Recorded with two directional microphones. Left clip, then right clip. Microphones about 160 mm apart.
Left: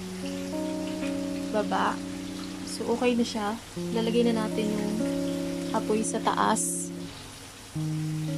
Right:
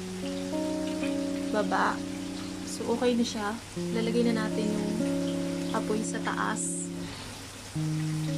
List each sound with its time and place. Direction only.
1.5 s speech: 5° left (ahead or behind)
6.2 s speech: 30° left (ahead or behind)